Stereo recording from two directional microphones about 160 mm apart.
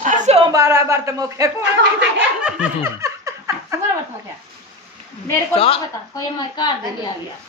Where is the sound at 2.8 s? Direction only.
20° right (ahead or behind).